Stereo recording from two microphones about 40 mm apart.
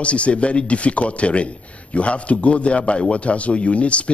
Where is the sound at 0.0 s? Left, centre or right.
Left.